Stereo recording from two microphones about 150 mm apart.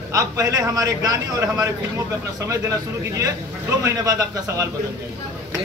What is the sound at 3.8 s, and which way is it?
Speech, 20° right (ahead or behind).